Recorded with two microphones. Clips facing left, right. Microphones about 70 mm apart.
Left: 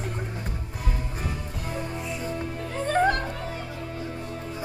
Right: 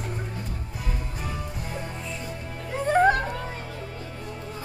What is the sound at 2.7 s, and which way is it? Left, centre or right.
Music, centre.